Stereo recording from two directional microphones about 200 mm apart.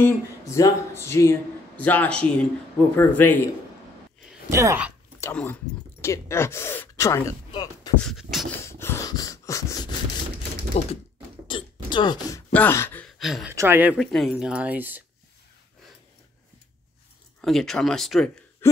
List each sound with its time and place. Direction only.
0.0 s speech: 15° left (ahead or behind)
4.5 s speech: 15° right (ahead or behind)
5.2 s speech: 10° left (ahead or behind)
8.0 s speech: centre (ahead or behind)
8.6 s a sound: 10° left (ahead or behind)
10.8 s speech: 30° left (ahead or behind)
11.4 s a sound: 25° left (ahead or behind)
12.5 s speech: 10° left (ahead or behind); by 13.9 s 10° right (ahead or behind)
13.9 s speech: centre (ahead or behind)
17.4 s speech: centre (ahead or behind)
18.6 s a sound: 10° left (ahead or behind)